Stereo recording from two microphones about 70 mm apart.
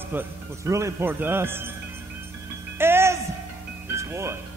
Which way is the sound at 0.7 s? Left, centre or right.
Right.